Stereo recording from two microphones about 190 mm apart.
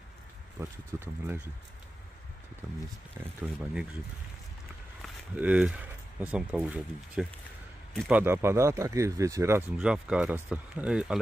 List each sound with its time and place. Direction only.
0.6 s speech: 15° right (ahead or behind)
5.0 s a man's voice: 5° right (ahead or behind)
8.2 s speech: 10° right (ahead or behind)